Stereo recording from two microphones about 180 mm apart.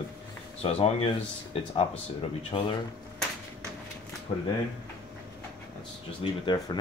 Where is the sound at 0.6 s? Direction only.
35° left (ahead or behind).